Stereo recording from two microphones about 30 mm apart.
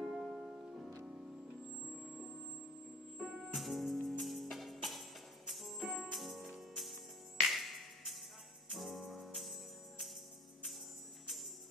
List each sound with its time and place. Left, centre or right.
0.0 s music: right
3.2 s music: centre